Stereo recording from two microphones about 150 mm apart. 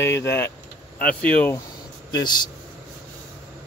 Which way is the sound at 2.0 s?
30° left (ahead or behind).